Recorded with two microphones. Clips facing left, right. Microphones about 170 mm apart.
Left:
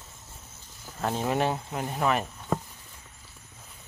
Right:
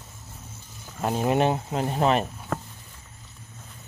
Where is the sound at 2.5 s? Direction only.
15° left (ahead or behind).